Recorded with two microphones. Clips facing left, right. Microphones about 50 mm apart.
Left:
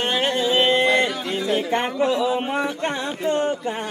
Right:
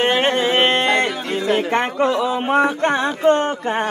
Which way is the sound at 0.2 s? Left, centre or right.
Right.